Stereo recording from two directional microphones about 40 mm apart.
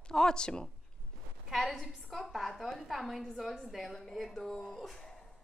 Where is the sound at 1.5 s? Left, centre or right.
Centre.